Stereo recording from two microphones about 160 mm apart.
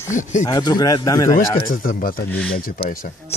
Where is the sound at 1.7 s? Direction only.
65° left (ahead or behind).